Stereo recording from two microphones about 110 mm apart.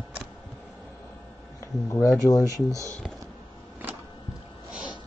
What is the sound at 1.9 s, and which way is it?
Speech, 30° left (ahead or behind).